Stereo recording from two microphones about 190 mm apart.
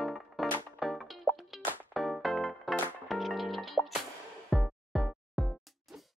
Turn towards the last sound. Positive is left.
turn(degrees=0)  # may be behind; listen again after turning